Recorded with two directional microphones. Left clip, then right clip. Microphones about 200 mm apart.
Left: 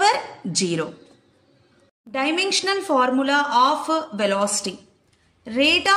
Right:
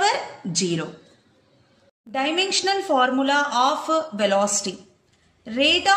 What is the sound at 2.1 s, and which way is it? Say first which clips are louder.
Speech: left 1 dB; 20° left (ahead or behind).